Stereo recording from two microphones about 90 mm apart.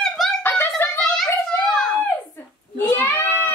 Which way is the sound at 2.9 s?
25° left (ahead or behind).